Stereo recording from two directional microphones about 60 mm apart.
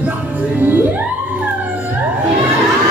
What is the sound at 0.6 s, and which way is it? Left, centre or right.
Music, right.